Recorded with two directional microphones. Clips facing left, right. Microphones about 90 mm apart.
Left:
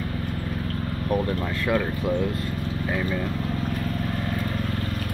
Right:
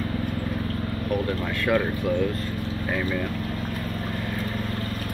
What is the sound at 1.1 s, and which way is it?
Speech, 30° left (ahead or behind).